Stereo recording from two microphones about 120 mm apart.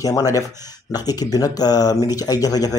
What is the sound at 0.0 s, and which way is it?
Speech, 30° left (ahead or behind).